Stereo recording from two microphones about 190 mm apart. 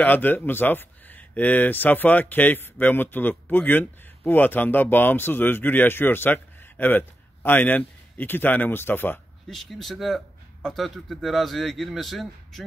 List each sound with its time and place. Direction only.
0.0 s speech: 10° left (ahead or behind)